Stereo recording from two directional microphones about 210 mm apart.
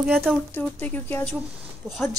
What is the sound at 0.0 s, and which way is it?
A woman's voice, centre (ahead or behind).